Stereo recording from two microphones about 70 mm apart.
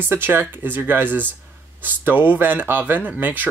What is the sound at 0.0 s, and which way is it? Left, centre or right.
Speech, right.